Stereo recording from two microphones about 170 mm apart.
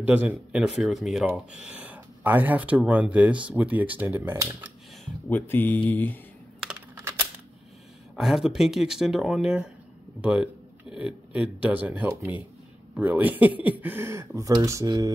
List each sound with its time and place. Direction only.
0.0 s speech: 10° right (ahead or behind)
5.3 s speech: 10° left (ahead or behind)
7.0 s a sound: 15° right (ahead or behind)
8.2 s speech: centre (ahead or behind); by 15.1 s 20° right (ahead or behind)